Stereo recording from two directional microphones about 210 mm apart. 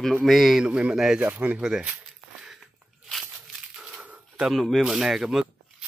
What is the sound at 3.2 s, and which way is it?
Speech, 5° right (ahead or behind).